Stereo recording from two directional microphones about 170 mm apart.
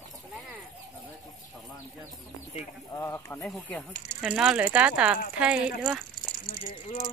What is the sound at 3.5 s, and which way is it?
Speech, 5° left (ahead or behind).